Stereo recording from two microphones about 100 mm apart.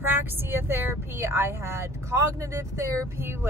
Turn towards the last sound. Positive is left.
turn(degrees=-25)  # may be behind; listen again after turning